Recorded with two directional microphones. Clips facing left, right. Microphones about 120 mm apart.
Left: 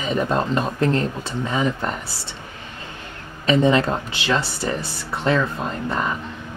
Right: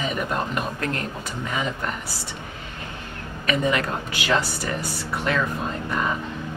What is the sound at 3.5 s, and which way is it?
Speech, 30° left (ahead or behind).